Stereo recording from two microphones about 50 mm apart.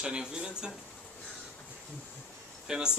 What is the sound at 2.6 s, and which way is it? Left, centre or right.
Speech, centre.